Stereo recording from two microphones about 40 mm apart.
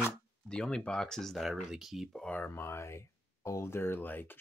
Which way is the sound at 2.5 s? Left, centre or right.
Left.